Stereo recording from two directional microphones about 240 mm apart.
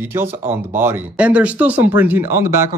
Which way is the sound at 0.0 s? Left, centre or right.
Centre.